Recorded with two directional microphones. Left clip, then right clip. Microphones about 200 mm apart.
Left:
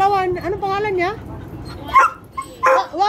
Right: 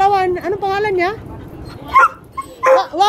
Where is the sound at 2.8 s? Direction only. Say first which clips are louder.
Right 3 dB; 20° right (ahead or behind).